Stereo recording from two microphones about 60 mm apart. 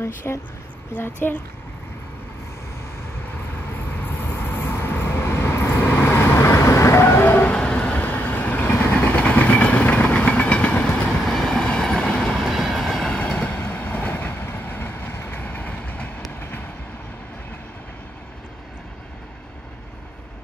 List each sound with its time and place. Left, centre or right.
0.0 s speech: left
0.9 s a child's voice: left
4.0 s vehicle: left
7.5 s vehicle: centre
9.2 s train: left
11.2 s train: centre
12.4 s train: centre
12.8 s train: centre
13.1 s train: centre
16.3 s train: left